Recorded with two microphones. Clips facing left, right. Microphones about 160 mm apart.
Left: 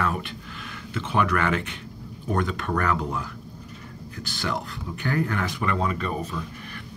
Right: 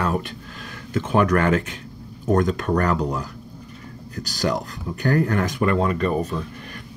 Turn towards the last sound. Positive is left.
turn(degrees=-45)  # may be behind; listen again after turning